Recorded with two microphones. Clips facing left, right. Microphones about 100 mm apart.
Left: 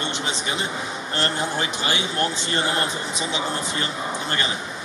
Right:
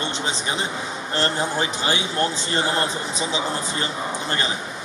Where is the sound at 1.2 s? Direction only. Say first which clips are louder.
Right 2 dB; 30° right (ahead or behind).